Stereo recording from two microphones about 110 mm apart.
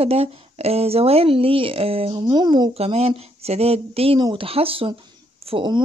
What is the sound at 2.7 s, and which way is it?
Speech, 65° right (ahead or behind).